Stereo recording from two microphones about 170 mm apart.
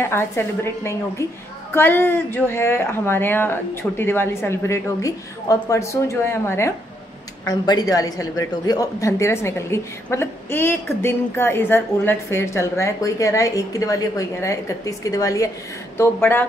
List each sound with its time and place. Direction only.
0.0 s speech: 15° left (ahead or behind)